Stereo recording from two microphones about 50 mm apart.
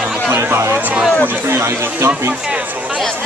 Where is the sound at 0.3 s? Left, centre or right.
Right.